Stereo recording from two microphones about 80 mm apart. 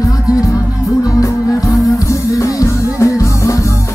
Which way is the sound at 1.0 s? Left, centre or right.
Left.